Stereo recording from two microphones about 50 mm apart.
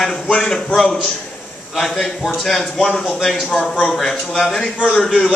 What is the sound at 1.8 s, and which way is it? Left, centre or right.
A man's voice, centre.